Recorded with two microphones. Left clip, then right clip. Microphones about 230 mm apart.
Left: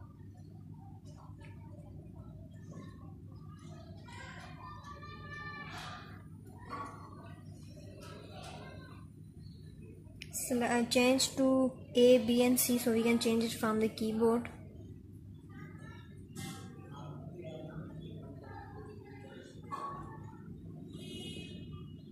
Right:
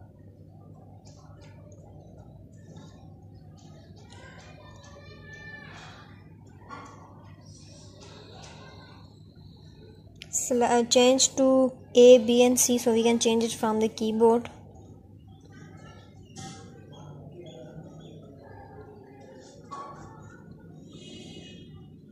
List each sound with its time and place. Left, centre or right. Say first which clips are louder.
10.6 s speech: right 9 dB; right